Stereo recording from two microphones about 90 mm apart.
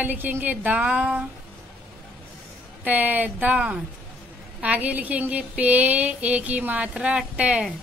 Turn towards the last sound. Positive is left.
turn(degrees=-10)  # may be behind; listen again after turning